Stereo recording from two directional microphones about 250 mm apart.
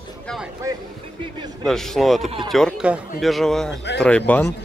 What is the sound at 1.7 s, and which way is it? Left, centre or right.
A man's voice, centre.